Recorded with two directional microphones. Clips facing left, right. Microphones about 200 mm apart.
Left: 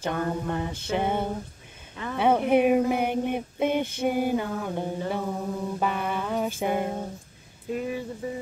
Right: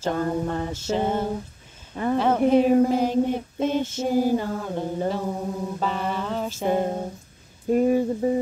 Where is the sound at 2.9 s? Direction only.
60° left (ahead or behind).